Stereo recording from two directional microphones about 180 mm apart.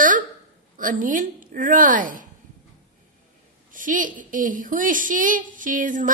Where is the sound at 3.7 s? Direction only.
45° right (ahead or behind).